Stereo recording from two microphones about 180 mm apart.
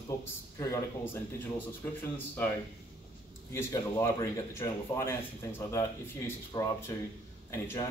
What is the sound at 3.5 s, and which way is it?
Speech, 15° left (ahead or behind).